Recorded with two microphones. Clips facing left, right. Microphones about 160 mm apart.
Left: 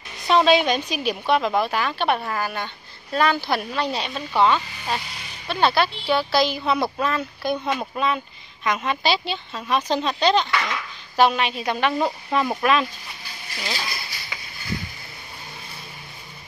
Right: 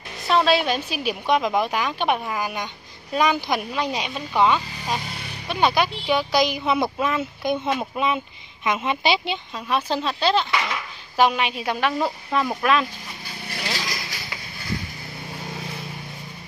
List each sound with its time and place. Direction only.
0.3 s a woman's voice: centre (ahead or behind); by 7.7 s 20° right (ahead or behind)
7.7 s speech: 5° right (ahead or behind)
8.6 s a woman's voice: 20° right (ahead or behind)
9.7 s a woman's voice: 5° right (ahead or behind)